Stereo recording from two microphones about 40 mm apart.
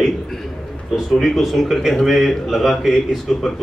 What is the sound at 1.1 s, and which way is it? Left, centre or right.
A man's voice, centre.